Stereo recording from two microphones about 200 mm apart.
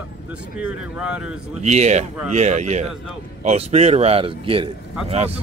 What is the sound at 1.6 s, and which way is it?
Speech, 35° right (ahead or behind).